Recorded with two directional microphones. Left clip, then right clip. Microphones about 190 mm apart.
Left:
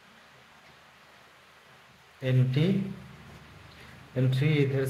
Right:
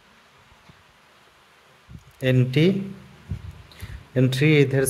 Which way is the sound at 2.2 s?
65° right (ahead or behind).